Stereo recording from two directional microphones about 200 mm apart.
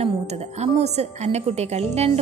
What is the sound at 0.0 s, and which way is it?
A woman's voice, 30° right (ahead or behind).